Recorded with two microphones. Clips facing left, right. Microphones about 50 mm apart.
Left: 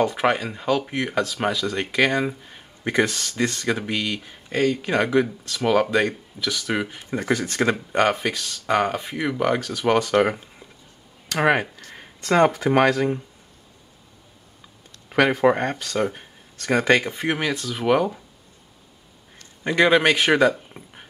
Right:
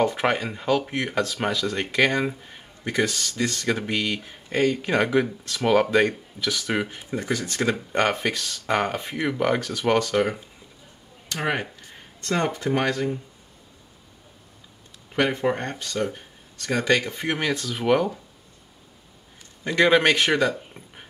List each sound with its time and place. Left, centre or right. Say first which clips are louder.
0.0 s speech: left 1 dB; centre
3.1 s speech: left 2 dB; centre
3.6 s speech: even; centre
7.2 s speech: left 4 dB; left
7.7 s speech: left 1 dB; centre
11.3 s speech: left 7 dB; left
12.2 s speech: left 7 dB; left
15.0 s speech: left 5 dB; left
16.1 s speech: even; left
17.1 s speech: left 1 dB; centre
19.7 s speech: left 1 dB; centre